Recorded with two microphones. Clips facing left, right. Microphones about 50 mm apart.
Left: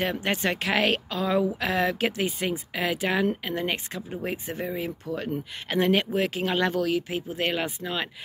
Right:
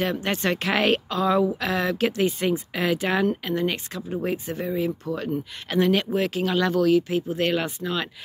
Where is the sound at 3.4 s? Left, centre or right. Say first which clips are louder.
Right 3 dB; centre.